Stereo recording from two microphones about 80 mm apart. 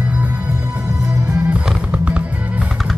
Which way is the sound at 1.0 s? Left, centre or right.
Right.